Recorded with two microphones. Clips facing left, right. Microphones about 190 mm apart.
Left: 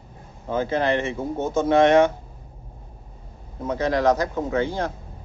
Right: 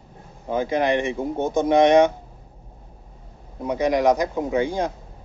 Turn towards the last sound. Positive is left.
turn(degrees=-15)  # may be behind; listen again after turning